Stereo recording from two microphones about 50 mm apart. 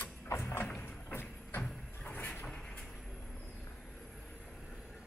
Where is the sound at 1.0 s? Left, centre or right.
Left.